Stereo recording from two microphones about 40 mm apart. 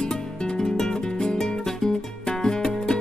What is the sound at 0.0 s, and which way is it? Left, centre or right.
Music, centre.